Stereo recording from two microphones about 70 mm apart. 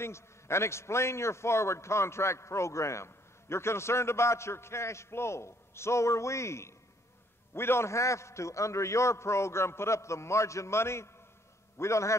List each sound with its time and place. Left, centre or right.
0.0 s a man's voice: left